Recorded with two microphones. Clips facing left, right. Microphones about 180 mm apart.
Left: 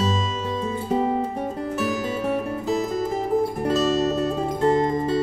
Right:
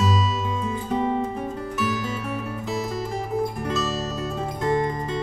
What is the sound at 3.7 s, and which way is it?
Music, 30° left (ahead or behind).